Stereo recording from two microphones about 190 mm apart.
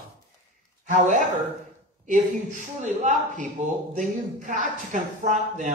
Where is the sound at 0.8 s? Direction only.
40° right (ahead or behind).